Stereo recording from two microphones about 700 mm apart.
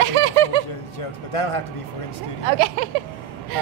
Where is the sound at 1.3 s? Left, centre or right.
Left.